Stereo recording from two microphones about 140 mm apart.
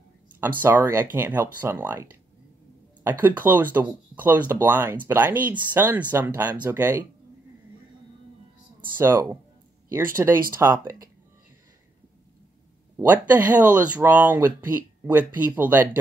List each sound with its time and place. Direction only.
0.4 s speech: 15° right (ahead or behind)
8.9 s speech: 15° right (ahead or behind)
12.9 s speech: 15° right (ahead or behind)